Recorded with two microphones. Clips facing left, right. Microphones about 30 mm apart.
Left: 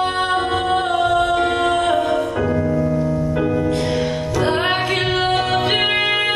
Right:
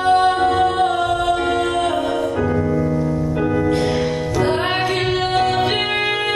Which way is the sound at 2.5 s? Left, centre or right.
Centre.